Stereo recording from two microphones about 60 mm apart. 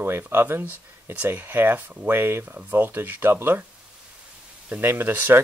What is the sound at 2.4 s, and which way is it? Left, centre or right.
Speech, right.